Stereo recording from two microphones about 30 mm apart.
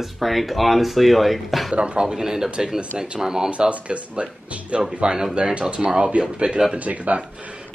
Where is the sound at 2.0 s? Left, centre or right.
Centre.